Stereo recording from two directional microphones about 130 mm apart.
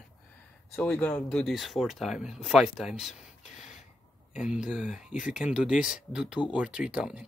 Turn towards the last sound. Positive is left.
turn(degrees=-10)  # may be behind; listen again after turning